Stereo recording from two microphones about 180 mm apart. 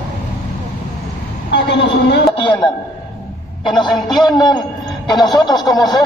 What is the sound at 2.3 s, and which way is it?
Throat clearing, 25° left (ahead or behind).